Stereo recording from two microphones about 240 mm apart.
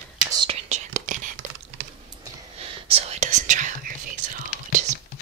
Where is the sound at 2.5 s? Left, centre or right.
Right.